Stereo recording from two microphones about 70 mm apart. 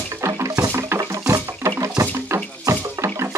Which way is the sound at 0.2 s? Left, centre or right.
Right.